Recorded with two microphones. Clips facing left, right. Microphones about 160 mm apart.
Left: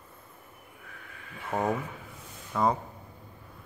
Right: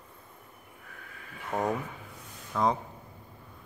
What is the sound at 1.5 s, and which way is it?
A man's voice, 5° left (ahead or behind).